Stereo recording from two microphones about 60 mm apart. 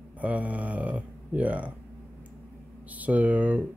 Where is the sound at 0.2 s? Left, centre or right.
Right.